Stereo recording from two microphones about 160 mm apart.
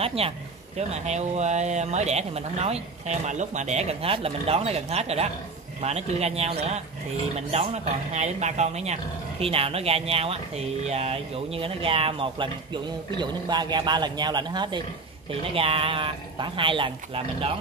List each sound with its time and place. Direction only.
0.0 s a man's voice: 40° right (ahead or behind)